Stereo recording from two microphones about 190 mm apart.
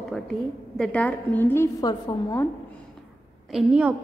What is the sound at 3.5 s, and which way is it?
Speech, 5° right (ahead or behind).